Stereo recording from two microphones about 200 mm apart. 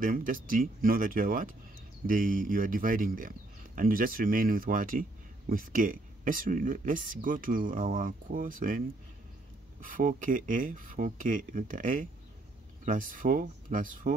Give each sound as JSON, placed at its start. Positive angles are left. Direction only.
{"t": 0.0, "sound": "speech", "side_deg": -45}